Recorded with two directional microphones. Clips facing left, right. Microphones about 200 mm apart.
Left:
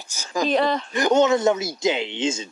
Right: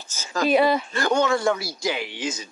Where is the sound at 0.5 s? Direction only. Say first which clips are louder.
Right 3 dB; 10° right (ahead or behind).